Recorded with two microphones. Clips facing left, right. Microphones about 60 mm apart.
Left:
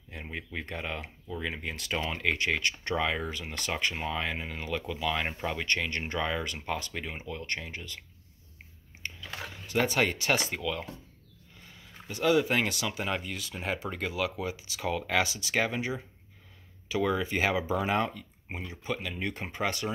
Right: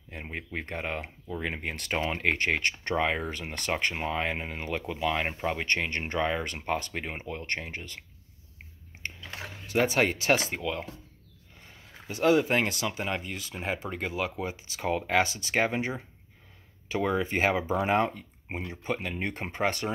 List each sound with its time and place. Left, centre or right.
0.1 s speech: right
9.0 s biting: right
9.9 s speech: right
12.2 s speech: right
17.0 s speech: right